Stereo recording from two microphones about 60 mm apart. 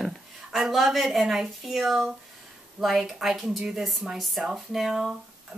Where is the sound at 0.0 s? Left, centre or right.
Centre.